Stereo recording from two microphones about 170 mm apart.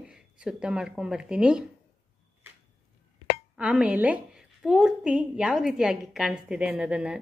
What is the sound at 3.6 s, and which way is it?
A woman's voice, 5° right (ahead or behind).